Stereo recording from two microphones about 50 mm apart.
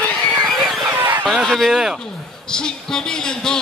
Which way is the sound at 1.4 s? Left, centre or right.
Centre.